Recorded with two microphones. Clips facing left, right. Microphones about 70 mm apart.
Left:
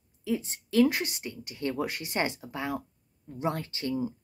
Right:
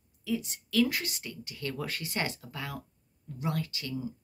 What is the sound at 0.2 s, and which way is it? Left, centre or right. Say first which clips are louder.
Speech: left 2 dB; left.